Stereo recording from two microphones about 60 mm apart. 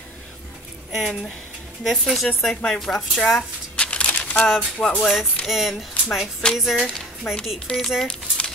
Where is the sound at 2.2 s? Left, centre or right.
Centre.